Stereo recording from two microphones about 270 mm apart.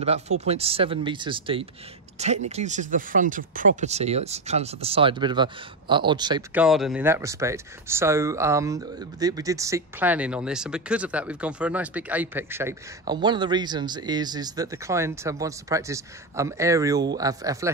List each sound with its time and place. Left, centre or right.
0.5 s speech: right
6.6 s speech: centre